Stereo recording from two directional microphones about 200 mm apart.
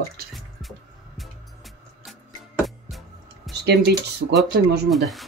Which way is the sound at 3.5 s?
55° right (ahead or behind).